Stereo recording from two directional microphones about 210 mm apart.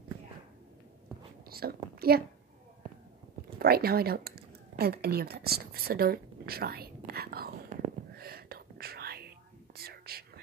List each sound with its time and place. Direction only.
1.5 s speech: 45° right (ahead or behind)
3.5 s a sound: 45° right (ahead or behind)
9.8 s whispering: 45° right (ahead or behind)